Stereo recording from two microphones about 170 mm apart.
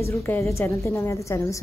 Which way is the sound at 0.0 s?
15° left (ahead or behind).